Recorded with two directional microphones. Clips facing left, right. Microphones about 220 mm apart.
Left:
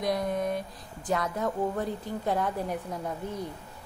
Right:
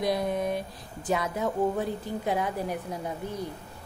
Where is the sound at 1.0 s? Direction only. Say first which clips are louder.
Right 1 dB; 5° right (ahead or behind).